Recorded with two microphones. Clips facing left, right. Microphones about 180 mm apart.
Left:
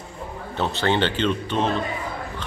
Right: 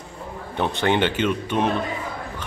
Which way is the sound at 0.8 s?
15° right (ahead or behind).